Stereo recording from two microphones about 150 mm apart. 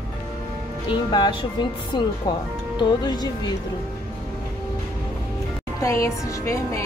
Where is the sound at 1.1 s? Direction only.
30° left (ahead or behind).